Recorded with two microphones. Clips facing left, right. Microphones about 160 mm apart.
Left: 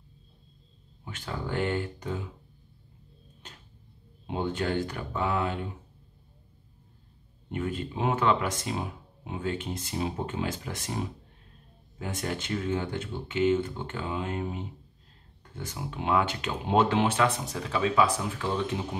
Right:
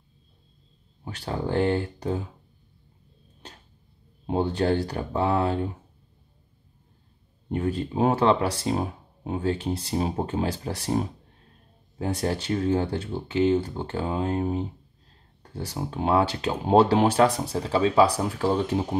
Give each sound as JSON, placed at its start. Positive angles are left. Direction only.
{"t": 1.0, "sound": "speech", "side_deg": -35}
{"t": 4.3, "sound": "speech", "side_deg": -35}
{"t": 7.4, "sound": "speech", "side_deg": -35}